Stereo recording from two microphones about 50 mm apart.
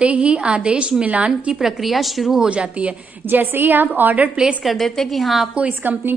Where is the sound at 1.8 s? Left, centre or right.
Centre.